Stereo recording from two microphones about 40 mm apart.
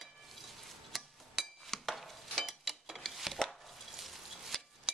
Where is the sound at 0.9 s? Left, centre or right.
Centre.